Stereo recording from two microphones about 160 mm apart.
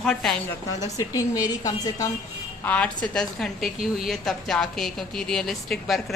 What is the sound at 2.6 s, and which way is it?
A woman's voice, 10° left (ahead or behind).